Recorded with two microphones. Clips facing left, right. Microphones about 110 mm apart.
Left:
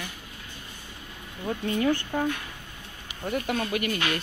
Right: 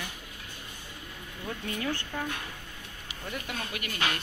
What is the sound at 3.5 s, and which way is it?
Speech, 45° left (ahead or behind).